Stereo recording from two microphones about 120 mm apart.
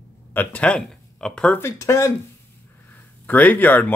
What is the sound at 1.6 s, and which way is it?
Speech, 25° left (ahead or behind).